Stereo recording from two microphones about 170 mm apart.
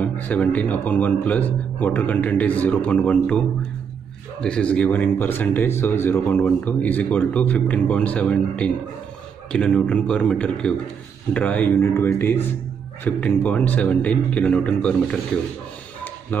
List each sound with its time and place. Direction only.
0.0 s a man's voice: 10° left (ahead or behind)